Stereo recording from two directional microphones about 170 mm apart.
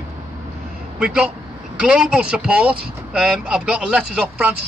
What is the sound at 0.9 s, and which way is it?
A man's voice, 5° right (ahead or behind).